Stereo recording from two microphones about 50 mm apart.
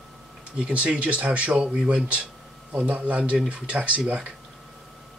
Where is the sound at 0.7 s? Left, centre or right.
Right.